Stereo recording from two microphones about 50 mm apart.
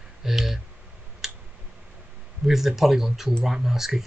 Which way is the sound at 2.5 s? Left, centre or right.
Centre.